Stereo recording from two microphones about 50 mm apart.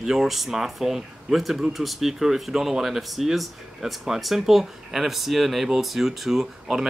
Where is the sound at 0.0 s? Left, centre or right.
Centre.